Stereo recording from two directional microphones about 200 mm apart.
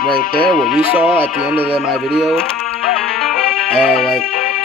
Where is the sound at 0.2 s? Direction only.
50° left (ahead or behind).